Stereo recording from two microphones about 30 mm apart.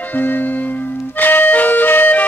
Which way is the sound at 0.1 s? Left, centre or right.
Left.